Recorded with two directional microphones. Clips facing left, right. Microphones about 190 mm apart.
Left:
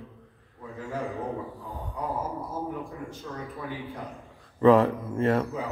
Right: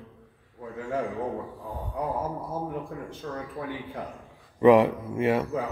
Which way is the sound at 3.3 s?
50° right (ahead or behind).